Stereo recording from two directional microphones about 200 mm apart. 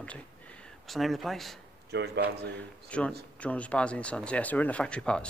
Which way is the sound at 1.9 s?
55° right (ahead or behind).